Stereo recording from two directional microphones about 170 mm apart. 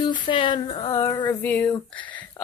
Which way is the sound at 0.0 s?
30° left (ahead or behind).